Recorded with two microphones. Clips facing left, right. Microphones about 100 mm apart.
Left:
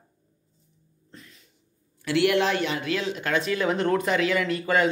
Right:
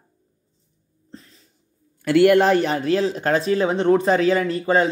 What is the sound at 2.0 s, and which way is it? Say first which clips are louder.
Speech: right 8 dB; 45° right (ahead or behind).